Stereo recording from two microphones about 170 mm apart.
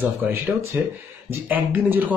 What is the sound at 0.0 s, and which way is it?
Speech, 10° right (ahead or behind).